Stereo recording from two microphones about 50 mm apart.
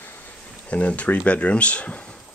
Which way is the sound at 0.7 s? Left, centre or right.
Left.